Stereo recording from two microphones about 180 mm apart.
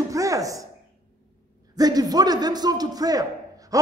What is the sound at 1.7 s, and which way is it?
A man's voice, 20° right (ahead or behind).